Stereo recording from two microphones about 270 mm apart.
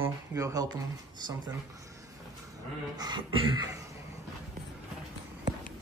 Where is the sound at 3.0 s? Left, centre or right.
Centre.